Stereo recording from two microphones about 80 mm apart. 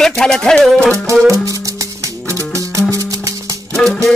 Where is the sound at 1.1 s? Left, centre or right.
Right.